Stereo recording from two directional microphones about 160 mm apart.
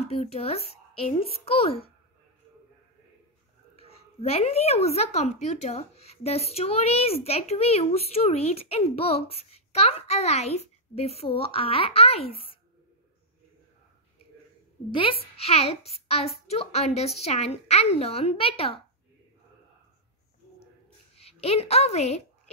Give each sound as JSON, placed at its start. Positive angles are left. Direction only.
{"t": 0.0, "sound": "a woman's voice", "side_deg": 40}
{"t": 3.7, "sound": "a woman's voice", "side_deg": 35}
{"t": 14.9, "sound": "a woman's voice", "side_deg": 35}
{"t": 21.2, "sound": "a woman's voice", "side_deg": 40}